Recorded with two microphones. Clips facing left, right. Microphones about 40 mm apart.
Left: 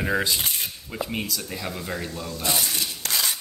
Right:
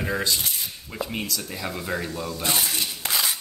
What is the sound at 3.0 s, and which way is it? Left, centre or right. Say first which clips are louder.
Dishes: right 1 dB; centre.